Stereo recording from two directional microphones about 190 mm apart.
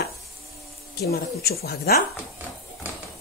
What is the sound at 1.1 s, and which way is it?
Speech, 55° left (ahead or behind).